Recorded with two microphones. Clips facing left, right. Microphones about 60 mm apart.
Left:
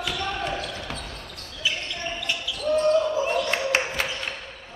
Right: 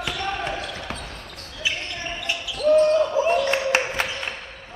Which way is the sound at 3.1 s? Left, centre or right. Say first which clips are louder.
Right 4 dB; centre.